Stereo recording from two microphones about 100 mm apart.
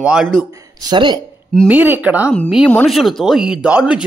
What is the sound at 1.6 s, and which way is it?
Speech, 15° right (ahead or behind).